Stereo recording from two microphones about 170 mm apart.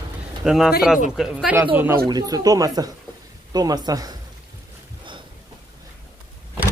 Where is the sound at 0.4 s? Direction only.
5° right (ahead or behind).